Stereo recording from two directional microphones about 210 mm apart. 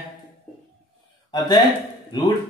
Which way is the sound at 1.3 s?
20° left (ahead or behind).